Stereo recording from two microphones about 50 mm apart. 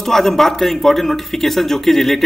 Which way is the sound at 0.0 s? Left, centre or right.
Centre.